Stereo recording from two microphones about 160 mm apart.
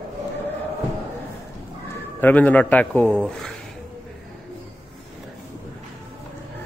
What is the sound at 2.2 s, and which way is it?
A man's voice, 10° left (ahead or behind).